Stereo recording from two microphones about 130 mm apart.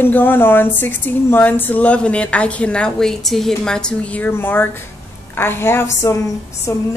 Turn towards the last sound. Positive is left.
turn(degrees=25)  # may be behind; listen again after turning